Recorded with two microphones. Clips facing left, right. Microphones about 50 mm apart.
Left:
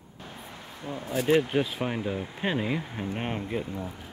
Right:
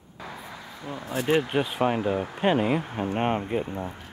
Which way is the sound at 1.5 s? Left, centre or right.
Centre.